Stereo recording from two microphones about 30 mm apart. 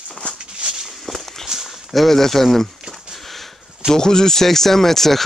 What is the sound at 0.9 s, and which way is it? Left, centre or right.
Walk, centre.